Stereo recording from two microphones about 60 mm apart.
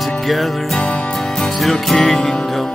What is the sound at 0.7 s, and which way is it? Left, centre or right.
Music, centre.